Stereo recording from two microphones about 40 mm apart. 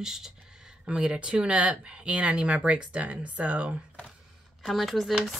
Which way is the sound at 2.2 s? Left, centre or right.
Right.